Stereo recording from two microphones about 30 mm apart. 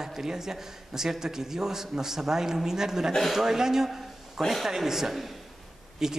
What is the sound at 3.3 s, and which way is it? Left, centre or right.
A man's voice, centre.